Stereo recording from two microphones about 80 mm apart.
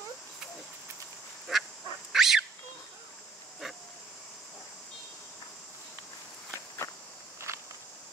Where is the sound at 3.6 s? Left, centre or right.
Centre.